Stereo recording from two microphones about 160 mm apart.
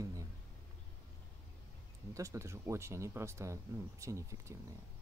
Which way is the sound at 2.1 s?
20° right (ahead or behind).